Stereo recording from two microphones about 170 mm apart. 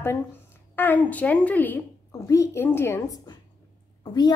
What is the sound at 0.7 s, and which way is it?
A woman's voice, 10° left (ahead or behind).